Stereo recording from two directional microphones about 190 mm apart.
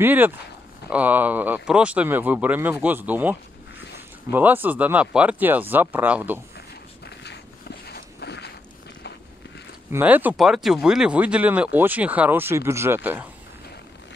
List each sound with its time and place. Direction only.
0.0 s speech: 10° right (ahead or behind)
7.9 s walk: 60° left (ahead or behind)
9.8 s speech: 10° right (ahead or behind)